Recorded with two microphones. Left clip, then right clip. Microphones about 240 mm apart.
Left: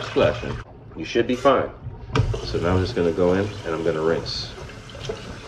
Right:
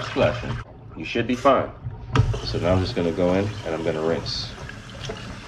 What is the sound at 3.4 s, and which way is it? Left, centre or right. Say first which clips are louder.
Speech: left 2 dB; centre.